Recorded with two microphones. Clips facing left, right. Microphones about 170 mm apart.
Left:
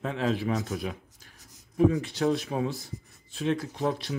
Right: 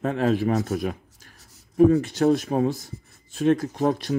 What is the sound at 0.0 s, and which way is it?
Speech, 50° right (ahead or behind).